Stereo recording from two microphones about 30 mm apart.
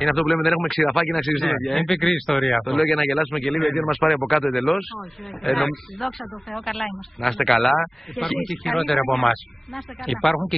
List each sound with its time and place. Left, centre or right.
0.0 s a man's voice: centre